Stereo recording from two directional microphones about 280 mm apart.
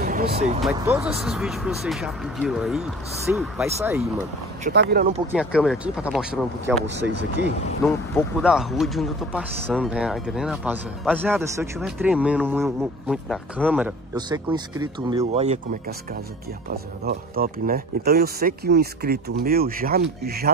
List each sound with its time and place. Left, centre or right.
0.0 s speech: right
0.6 s speech: centre
4.6 s speech: right
5.3 s speech: centre
7.0 s speech: right
7.8 s speech: centre; by 20.5 s right